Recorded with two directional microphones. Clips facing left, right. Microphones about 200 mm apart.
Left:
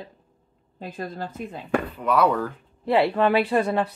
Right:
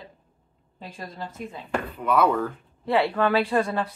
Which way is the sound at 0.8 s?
55° left (ahead or behind).